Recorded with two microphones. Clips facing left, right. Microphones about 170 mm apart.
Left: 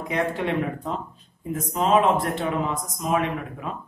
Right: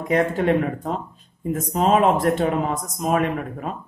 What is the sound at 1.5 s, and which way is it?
Speech, 45° right (ahead or behind).